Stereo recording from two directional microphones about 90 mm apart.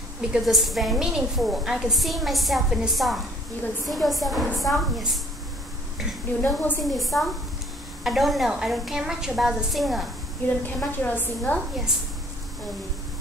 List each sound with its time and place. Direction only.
0.2 s a woman's voice: 5° right (ahead or behind)
6.4 s a woman's voice: 20° left (ahead or behind)
6.8 s a woman's voice: centre (ahead or behind)
10.4 s a woman's voice: 25° left (ahead or behind)